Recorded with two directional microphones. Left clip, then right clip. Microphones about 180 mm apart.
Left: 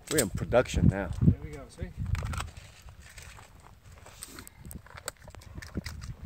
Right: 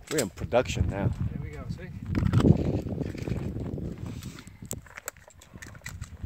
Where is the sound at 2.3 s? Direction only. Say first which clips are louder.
Right 15 dB; 30° left (ahead or behind).